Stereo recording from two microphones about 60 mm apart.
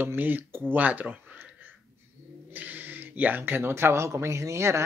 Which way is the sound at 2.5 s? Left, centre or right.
Right.